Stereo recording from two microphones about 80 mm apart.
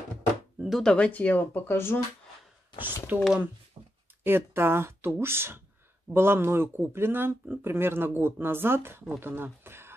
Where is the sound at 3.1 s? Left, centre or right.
Right.